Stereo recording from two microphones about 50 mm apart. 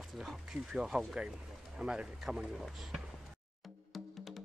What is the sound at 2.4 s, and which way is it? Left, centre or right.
Speech, centre.